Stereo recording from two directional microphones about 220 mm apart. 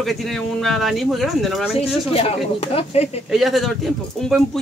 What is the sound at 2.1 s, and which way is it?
Speech, 25° left (ahead or behind).